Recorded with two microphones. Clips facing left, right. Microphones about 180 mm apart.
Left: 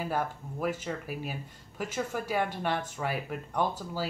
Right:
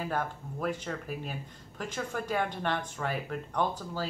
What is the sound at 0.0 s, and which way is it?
Speech, 10° left (ahead or behind).